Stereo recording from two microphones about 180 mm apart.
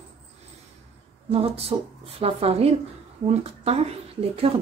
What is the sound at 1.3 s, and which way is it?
A woman's voice, 35° right (ahead or behind).